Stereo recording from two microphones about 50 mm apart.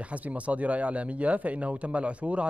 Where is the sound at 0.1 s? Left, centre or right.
Right.